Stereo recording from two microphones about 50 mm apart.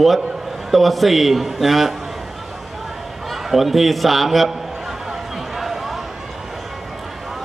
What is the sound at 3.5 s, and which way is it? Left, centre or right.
A man's voice, centre.